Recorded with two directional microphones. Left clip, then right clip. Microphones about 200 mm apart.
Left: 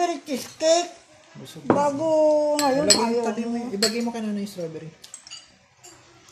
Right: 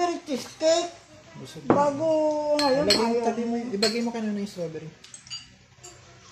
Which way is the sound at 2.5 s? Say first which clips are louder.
Left 1 dB; 45° left (ahead or behind).